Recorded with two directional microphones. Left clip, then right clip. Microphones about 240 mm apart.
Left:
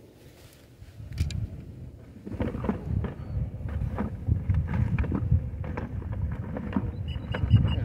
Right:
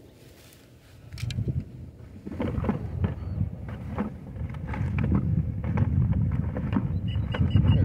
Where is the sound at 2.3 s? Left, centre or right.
Right.